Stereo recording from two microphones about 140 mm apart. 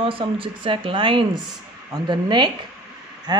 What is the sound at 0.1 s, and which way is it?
A man's voice, 40° right (ahead or behind).